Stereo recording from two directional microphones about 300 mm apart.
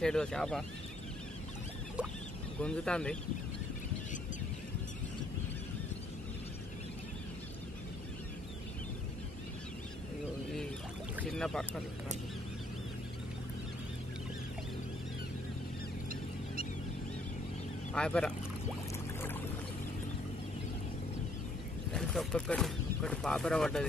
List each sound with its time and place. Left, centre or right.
0.0 s speech: centre
2.6 s speech: centre
11.1 s speech: centre
17.9 s speech: centre
21.9 s speech: centre